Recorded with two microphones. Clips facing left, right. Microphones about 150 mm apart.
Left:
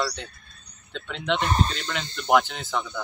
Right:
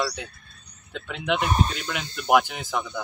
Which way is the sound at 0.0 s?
5° right (ahead or behind).